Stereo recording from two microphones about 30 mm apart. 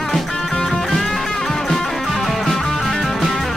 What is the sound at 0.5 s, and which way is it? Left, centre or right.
Music, centre.